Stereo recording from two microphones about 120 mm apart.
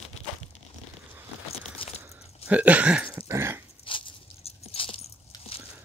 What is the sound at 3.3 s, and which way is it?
Dog, 20° right (ahead or behind).